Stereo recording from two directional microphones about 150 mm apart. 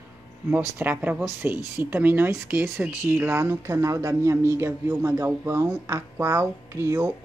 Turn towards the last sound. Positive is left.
turn(degrees=-20)  # may be behind; listen again after turning